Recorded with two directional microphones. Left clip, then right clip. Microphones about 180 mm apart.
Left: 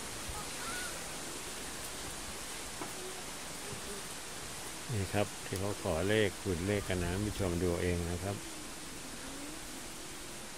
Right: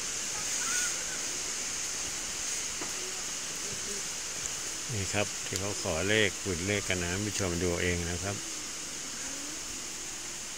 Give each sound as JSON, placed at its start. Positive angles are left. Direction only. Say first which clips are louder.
{"t": 5.1, "sound": "speech", "louder": "right 3 dB", "side_deg": 0}